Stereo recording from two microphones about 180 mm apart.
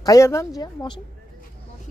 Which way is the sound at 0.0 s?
20° left (ahead or behind).